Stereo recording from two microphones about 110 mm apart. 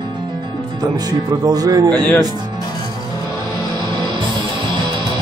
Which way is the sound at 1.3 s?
35° right (ahead or behind).